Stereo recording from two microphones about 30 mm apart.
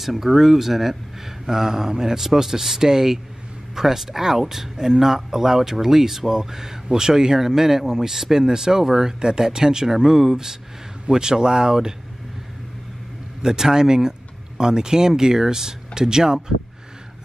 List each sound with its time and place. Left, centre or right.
0.0 s speech: centre
13.4 s speech: right